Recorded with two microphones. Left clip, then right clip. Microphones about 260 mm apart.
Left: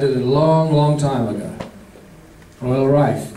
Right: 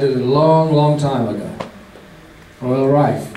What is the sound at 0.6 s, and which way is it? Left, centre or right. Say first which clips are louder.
Speech: right 2 dB; right.